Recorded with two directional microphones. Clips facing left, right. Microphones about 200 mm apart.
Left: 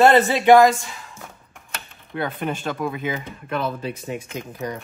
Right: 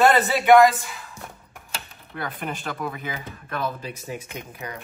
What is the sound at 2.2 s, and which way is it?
Speech, 25° left (ahead or behind).